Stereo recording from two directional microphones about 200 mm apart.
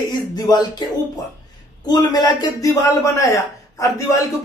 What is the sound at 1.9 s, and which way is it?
A man's voice, 20° left (ahead or behind).